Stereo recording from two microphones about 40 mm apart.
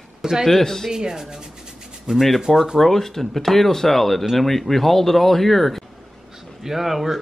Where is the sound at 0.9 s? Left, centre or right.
Centre.